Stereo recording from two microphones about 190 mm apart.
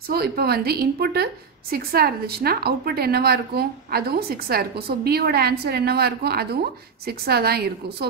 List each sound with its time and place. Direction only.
0.1 s a woman's voice: 55° right (ahead or behind)